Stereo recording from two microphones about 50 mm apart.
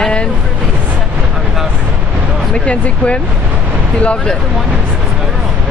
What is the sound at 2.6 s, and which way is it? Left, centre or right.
Speech, left.